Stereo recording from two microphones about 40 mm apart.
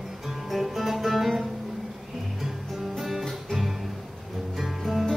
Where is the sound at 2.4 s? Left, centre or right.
Centre.